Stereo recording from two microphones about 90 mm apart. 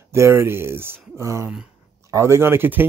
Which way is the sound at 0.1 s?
30° right (ahead or behind).